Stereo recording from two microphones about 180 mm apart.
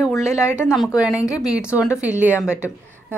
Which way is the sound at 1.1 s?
20° left (ahead or behind).